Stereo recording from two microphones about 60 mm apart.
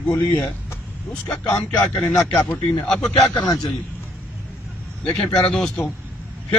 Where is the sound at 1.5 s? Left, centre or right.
Left.